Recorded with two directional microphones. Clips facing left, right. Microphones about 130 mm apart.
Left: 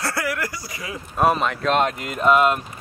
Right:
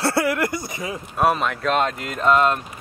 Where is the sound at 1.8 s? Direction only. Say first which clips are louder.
Left 1 dB; 10° left (ahead or behind).